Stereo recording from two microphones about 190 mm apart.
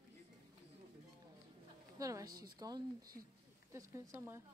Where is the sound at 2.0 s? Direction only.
20° right (ahead or behind).